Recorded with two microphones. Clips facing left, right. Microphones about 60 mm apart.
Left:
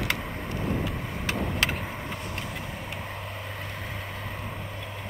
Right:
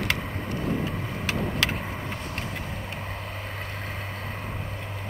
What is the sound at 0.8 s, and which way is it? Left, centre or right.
Vehicle, right.